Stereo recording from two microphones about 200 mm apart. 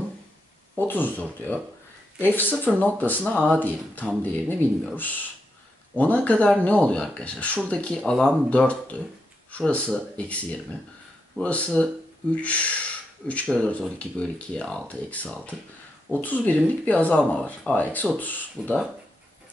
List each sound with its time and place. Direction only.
0.7 s speech: 10° left (ahead or behind)